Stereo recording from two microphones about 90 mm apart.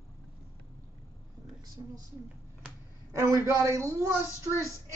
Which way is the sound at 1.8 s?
50° right (ahead or behind).